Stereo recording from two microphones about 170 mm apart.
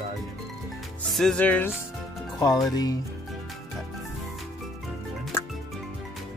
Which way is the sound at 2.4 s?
20° left (ahead or behind).